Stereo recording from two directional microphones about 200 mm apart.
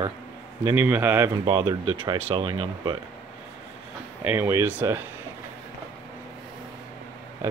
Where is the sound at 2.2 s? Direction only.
25° right (ahead or behind).